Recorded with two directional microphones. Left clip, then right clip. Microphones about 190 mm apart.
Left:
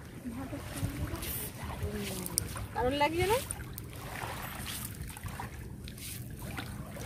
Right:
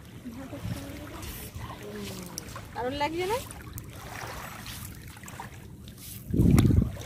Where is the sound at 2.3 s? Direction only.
30° left (ahead or behind).